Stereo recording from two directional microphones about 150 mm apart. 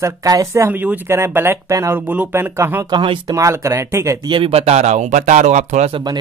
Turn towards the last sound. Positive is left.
turn(degrees=-30)  # may be behind; listen again after turning